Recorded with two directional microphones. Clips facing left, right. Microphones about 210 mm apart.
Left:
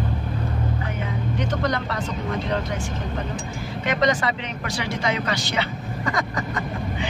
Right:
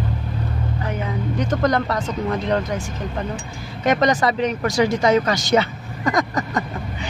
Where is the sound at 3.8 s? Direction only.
45° right (ahead or behind).